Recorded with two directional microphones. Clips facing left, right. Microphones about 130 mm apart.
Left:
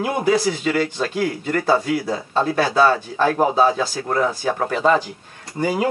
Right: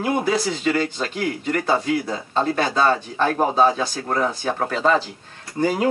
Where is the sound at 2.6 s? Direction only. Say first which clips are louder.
Left 4 dB; 25° right (ahead or behind).